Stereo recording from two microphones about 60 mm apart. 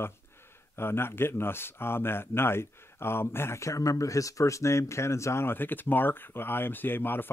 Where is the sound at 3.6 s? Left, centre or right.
Left.